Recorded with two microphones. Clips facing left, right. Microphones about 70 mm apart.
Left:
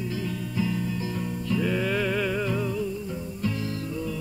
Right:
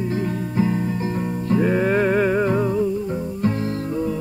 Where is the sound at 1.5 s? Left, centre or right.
Right.